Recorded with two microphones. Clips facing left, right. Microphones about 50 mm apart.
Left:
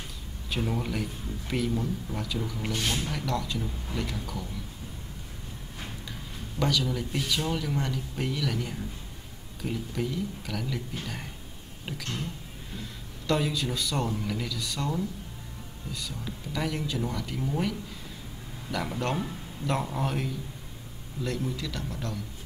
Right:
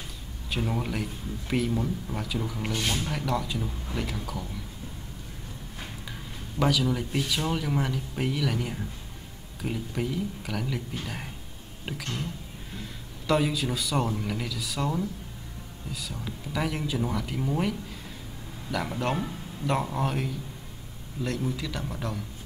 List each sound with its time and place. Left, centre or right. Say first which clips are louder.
0.5 s a man's voice: right 1 dB; centre
6.6 s a man's voice: right 3 dB; centre
13.3 s a man's voice: right 2 dB; centre